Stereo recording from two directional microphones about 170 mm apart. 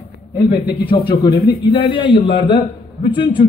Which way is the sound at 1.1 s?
70° left (ahead or behind).